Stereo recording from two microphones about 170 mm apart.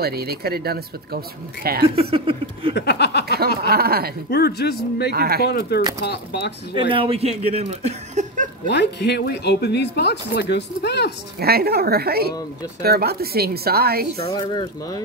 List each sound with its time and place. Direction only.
0.0 s speech: 65° right (ahead or behind)
2.0 s speech: 35° right (ahead or behind)
2.7 s speech: 80° left
3.3 s speech: 65° right (ahead or behind)
4.3 s speech: 70° left (ahead or behind)
5.1 s speech: 65° right (ahead or behind)
5.4 s speech: 70° left (ahead or behind)
6.7 s speech: 30° right (ahead or behind)
8.6 s speech: 80° left
11.3 s speech: 65° right (ahead or behind)
14.3 s speech: 25° left (ahead or behind)